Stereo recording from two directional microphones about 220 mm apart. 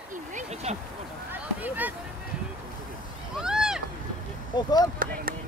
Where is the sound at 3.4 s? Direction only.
5° right (ahead or behind).